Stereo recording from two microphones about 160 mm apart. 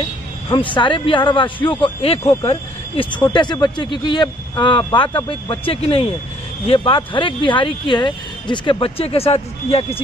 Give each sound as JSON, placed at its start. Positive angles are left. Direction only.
{"t": 0.5, "sound": "speech", "side_deg": 30}